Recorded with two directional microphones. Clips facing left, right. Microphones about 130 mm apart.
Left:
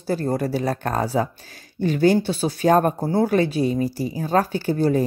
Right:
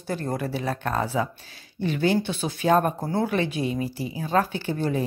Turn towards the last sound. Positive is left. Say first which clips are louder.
# left 6 dB
turn(degrees=40)  # may be behind; listen again after turning